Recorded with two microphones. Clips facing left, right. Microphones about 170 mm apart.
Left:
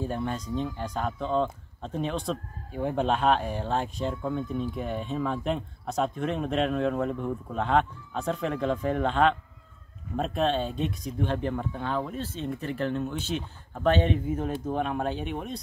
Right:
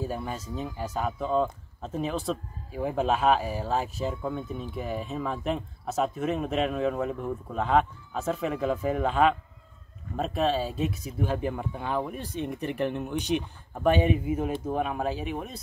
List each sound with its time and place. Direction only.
0.0 s speech: 5° right (ahead or behind)